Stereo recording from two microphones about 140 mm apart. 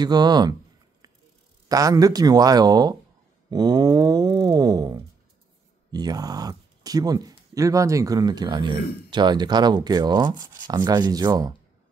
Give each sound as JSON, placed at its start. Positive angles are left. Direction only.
{"t": 0.0, "sound": "speech", "side_deg": -30}
{"t": 1.7, "sound": "speech", "side_deg": -25}